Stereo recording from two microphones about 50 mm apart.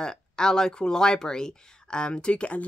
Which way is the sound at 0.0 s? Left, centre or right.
Centre.